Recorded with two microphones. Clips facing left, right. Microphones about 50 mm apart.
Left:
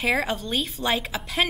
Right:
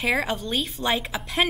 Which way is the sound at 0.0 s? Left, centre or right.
Centre.